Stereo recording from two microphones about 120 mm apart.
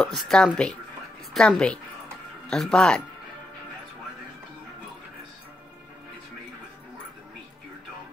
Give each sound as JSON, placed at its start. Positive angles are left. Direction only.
{"t": 0.0, "sound": "a woman's voice", "side_deg": 5}